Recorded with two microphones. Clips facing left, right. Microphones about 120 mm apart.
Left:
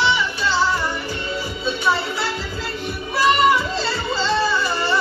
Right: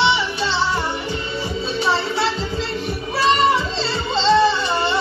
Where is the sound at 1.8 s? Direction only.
30° right (ahead or behind).